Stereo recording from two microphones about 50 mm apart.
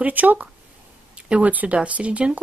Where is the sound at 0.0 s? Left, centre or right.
Right.